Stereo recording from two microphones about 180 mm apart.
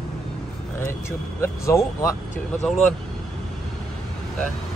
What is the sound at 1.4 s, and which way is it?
Speech, 15° left (ahead or behind).